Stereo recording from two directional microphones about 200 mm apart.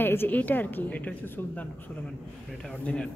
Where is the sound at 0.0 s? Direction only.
10° left (ahead or behind).